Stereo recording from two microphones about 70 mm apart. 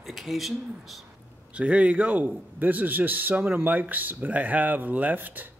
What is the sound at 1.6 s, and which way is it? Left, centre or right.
A man's voice, centre.